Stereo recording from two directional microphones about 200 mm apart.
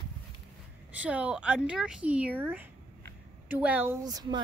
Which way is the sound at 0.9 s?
5° right (ahead or behind).